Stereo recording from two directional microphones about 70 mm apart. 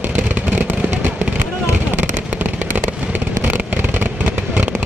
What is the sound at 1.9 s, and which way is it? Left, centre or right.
Fireworks, right.